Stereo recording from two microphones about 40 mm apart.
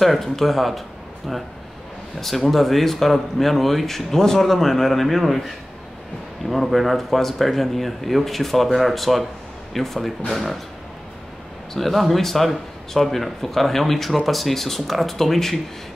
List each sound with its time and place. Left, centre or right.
0.0 s a man's voice: centre
11.7 s a man's voice: centre